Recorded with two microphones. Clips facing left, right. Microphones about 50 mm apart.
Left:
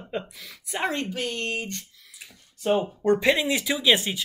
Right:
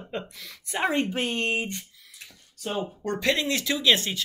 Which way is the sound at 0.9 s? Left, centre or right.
Right.